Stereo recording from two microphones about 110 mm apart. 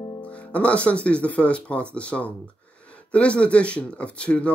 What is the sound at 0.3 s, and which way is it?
Speech, 10° left (ahead or behind).